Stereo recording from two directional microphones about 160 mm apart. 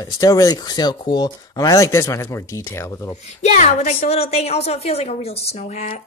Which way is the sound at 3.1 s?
45° left (ahead or behind).